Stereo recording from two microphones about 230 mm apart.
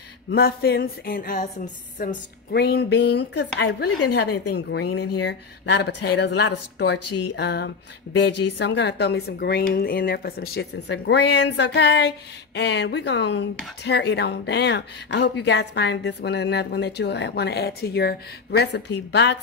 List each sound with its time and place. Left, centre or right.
0.3 s speech: left
7.1 s speech: left
7.3 s speech: left